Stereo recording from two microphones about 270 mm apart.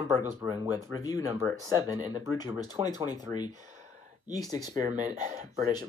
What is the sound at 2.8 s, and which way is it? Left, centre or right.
Speech, centre.